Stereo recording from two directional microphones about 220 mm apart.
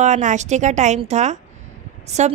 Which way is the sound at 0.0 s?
35° right (ahead or behind).